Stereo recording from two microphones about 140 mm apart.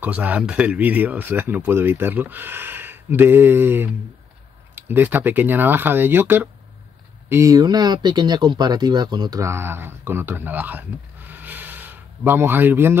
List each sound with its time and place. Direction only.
0.0 s speech: 10° right (ahead or behind)